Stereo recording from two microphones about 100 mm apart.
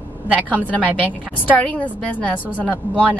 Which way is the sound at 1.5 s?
15° left (ahead or behind).